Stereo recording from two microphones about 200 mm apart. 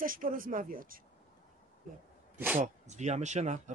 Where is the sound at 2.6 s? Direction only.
35° right (ahead or behind).